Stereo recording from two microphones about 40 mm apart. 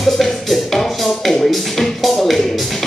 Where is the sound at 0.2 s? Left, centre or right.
Centre.